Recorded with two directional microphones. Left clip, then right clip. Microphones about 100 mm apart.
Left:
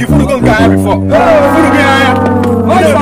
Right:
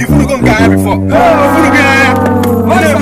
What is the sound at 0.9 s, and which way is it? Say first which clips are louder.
Music: left 1 dB; 5° left (ahead or behind).